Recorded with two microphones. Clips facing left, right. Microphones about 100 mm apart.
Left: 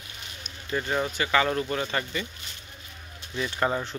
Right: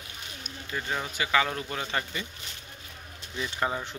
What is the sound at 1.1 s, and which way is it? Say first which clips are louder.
Speech: left 1 dB; 5° right (ahead or behind).